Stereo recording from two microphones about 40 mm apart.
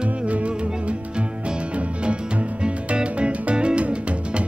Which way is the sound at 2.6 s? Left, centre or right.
Right.